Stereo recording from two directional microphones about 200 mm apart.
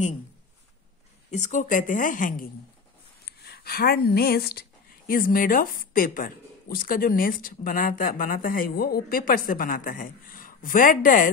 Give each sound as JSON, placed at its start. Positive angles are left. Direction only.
{"t": 1.3, "sound": "speech", "side_deg": 35}